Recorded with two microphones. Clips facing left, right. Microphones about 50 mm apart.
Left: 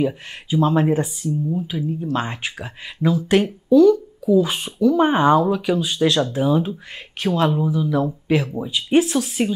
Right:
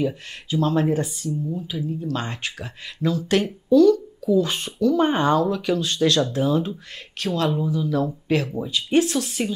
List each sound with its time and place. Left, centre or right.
0.0 s speech: centre
7.2 s speech: left